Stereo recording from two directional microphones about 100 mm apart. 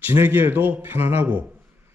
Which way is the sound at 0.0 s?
20° right (ahead or behind).